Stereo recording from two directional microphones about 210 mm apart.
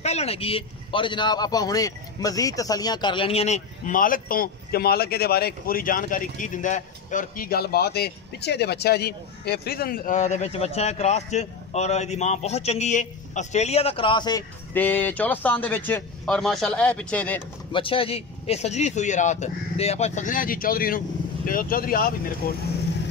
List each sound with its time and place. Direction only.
0.0 s a man's voice: 30° left (ahead or behind)
14.7 s a man's voice: 10° left (ahead or behind)
17.7 s a man's voice: 25° left (ahead or behind); by 22.6 s 45° left (ahead or behind)